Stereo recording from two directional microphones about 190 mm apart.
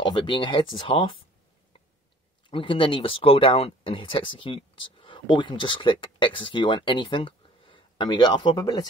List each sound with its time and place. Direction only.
0.0 s speech: 25° left (ahead or behind)
2.5 s speech: 25° left (ahead or behind)